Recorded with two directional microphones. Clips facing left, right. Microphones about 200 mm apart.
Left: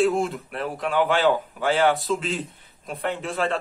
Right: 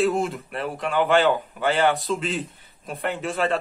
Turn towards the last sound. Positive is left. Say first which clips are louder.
# right 1 dB
turn(degrees=0)  # may be behind; listen again after turning